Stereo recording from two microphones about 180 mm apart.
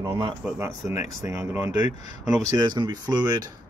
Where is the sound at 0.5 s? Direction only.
15° right (ahead or behind).